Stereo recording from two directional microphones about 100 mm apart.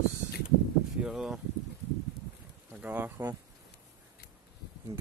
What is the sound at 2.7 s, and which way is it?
Speech, 15° right (ahead or behind).